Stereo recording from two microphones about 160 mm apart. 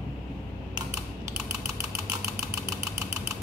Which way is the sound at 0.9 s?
15° right (ahead or behind).